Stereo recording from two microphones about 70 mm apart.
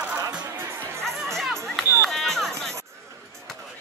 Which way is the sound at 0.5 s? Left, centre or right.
Right.